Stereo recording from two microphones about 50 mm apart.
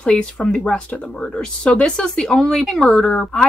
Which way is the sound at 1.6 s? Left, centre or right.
Left.